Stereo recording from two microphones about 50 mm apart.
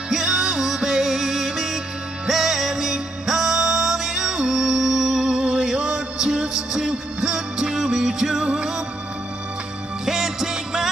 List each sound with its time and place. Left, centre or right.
0.1 s music: centre
10.0 s music: centre